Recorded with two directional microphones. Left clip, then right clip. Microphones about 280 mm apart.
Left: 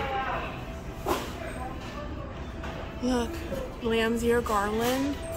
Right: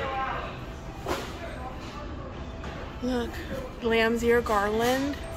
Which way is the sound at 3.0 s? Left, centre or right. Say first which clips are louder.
Left 1 dB; centre.